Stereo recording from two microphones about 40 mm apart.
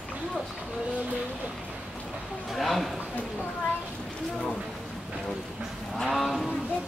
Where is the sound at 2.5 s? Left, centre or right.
Centre.